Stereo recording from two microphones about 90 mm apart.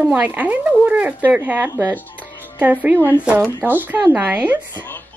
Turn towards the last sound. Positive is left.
turn(degrees=25)  # may be behind; listen again after turning